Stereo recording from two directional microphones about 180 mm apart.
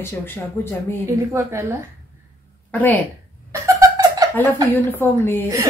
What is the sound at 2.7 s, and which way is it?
Speech, 10° left (ahead or behind).